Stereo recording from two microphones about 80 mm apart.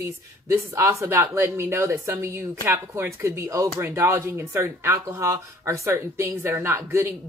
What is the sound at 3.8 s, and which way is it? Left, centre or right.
Speech, right.